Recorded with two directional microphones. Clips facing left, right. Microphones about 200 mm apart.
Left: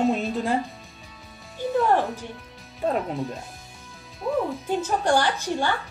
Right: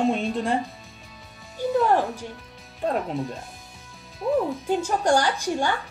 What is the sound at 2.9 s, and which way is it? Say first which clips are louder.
Speech: even; centre (ahead or behind).